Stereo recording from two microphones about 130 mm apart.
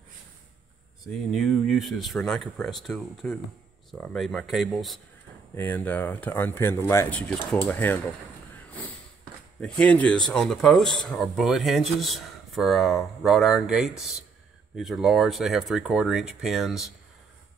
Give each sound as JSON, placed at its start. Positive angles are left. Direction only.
{"t": 1.0, "sound": "speech", "side_deg": 0}
{"t": 5.5, "sound": "speech", "side_deg": 15}
{"t": 9.6, "sound": "speech", "side_deg": 5}